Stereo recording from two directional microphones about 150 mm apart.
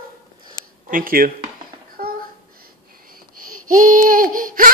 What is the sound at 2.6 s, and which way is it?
Babbling, 75° right (ahead or behind).